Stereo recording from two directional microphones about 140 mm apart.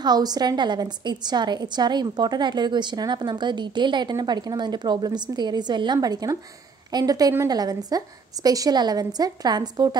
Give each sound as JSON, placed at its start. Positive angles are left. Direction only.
{"t": 0.0, "sound": "a woman's voice", "side_deg": -30}